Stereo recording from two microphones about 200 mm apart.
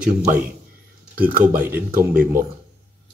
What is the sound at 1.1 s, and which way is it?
Speech, 45° right (ahead or behind).